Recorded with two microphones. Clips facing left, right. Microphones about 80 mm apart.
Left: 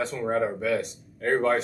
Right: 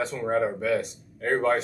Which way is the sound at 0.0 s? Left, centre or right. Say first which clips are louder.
Right 1 dB; centre.